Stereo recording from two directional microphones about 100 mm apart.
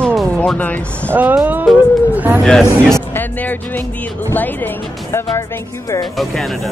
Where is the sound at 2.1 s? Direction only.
15° right (ahead or behind).